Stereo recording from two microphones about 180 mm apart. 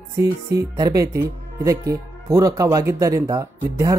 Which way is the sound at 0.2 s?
20° right (ahead or behind).